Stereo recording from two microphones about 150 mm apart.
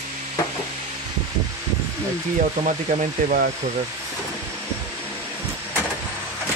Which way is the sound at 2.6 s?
55° right (ahead or behind).